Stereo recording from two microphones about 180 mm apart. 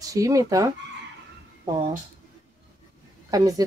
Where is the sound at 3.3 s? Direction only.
20° right (ahead or behind).